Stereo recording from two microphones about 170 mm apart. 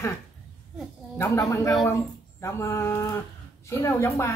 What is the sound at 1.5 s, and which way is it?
Speech, 15° left (ahead or behind).